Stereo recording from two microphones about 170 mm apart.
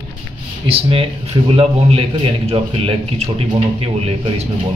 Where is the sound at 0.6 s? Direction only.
35° right (ahead or behind).